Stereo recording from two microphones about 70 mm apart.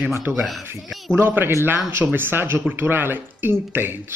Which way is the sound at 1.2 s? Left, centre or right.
Right.